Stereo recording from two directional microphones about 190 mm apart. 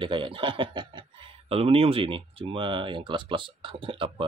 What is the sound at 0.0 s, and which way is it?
Speech, 25° right (ahead or behind).